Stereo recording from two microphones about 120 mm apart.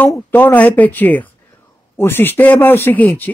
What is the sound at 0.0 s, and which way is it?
Speech, 15° left (ahead or behind).